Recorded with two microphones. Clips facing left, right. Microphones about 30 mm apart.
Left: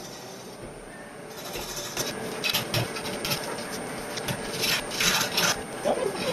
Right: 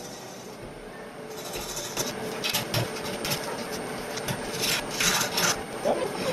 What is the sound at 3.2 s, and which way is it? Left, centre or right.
Vehicle, centre.